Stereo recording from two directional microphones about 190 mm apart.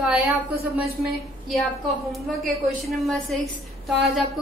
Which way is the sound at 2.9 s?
Centre (ahead or behind).